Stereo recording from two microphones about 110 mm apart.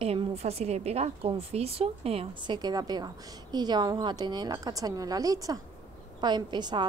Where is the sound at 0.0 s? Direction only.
60° right (ahead or behind).